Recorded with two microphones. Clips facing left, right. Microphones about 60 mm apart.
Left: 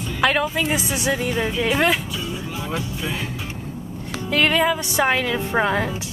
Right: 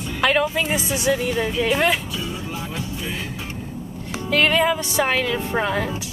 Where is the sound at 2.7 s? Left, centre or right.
Left.